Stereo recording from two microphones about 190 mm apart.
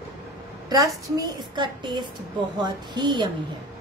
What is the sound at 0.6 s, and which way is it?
A woman's voice, 20° right (ahead or behind).